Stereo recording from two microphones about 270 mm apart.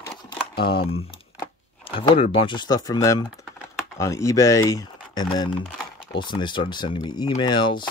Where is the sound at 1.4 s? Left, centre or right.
Centre.